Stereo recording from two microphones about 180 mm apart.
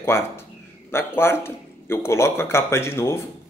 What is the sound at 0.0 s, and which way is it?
Speech, 15° left (ahead or behind).